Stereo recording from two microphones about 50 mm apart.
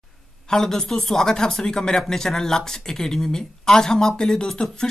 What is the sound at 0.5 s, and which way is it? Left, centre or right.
Speech, centre.